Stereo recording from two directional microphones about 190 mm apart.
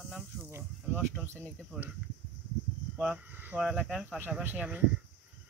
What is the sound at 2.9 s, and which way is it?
Speech, 5° right (ahead or behind).